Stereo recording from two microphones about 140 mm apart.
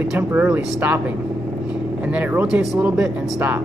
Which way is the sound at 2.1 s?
10° right (ahead or behind).